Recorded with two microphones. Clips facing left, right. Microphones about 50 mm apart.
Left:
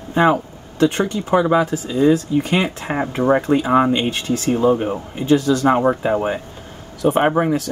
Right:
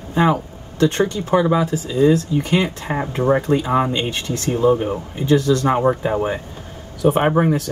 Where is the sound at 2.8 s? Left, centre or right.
Centre.